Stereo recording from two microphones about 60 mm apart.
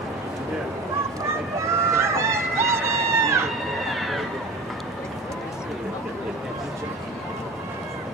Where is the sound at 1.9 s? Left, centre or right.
Right.